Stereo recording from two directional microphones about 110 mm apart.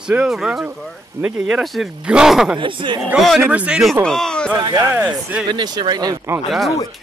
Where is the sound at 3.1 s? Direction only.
Centre (ahead or behind).